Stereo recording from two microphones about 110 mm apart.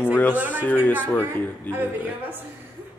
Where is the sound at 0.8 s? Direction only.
15° left (ahead or behind).